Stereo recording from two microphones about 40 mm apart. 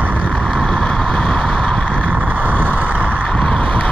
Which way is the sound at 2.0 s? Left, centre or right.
Right.